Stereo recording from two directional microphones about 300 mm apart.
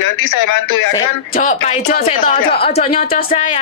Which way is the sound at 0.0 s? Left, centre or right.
Left.